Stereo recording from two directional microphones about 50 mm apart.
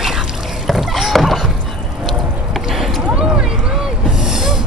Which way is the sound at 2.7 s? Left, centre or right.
Centre.